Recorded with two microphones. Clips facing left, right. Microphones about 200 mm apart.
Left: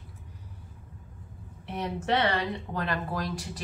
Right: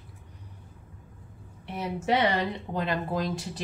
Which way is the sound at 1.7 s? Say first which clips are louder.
Right 1 dB; 5° right (ahead or behind).